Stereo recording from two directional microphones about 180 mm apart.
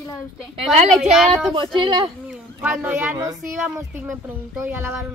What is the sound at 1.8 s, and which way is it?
Speech, 25° right (ahead or behind).